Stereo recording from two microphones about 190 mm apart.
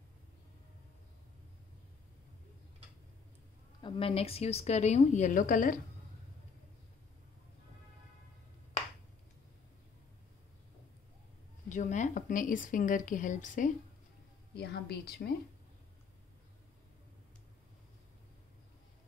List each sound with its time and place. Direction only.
3.8 s a woman's voice: 25° left (ahead or behind); by 5.8 s 45° left (ahead or behind)
11.7 s a woman's voice: 40° left (ahead or behind)
14.5 s speech: 55° left (ahead or behind)